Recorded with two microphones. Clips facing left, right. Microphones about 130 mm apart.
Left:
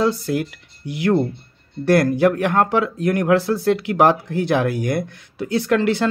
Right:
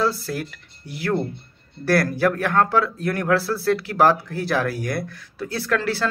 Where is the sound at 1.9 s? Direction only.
20° left (ahead or behind).